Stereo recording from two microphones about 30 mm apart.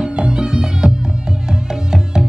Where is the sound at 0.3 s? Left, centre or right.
Right.